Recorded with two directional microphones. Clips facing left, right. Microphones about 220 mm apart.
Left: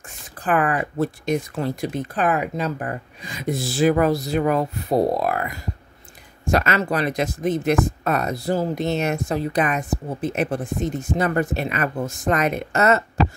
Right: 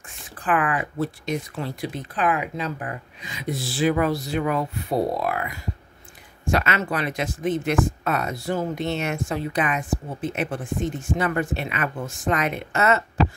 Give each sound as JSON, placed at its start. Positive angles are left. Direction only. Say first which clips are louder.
{"t": 0.4, "sound": "speech", "louder": "left 3 dB", "side_deg": 40}